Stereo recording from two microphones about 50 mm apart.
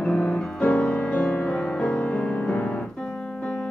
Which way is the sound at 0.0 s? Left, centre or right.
Left.